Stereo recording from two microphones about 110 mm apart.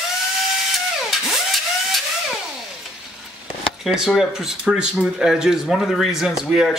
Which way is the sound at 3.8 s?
5° right (ahead or behind).